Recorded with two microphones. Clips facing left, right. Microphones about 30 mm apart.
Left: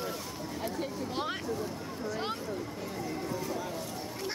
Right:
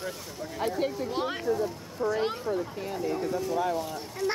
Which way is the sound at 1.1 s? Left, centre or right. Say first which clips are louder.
Right 5 dB; centre.